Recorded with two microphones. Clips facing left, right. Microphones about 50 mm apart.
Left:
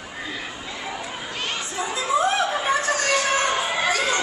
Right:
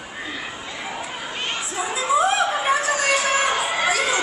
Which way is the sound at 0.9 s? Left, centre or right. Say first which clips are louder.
Right 1 dB; centre.